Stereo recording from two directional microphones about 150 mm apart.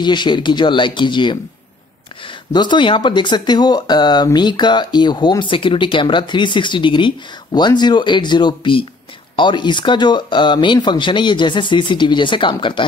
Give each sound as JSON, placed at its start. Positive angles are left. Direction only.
{"t": 0.0, "sound": "speech", "side_deg": 30}
{"t": 2.5, "sound": "speech", "side_deg": 30}